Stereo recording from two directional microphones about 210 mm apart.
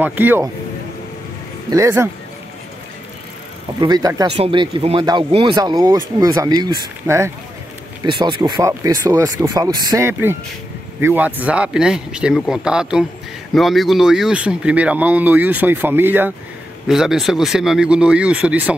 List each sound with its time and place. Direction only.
0.0 s speech: 10° right (ahead or behind)
1.7 s speech: 15° right (ahead or behind)
3.8 s speech: 20° right (ahead or behind)